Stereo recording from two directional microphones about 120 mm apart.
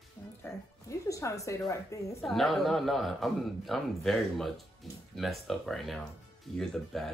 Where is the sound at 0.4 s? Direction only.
25° left (ahead or behind).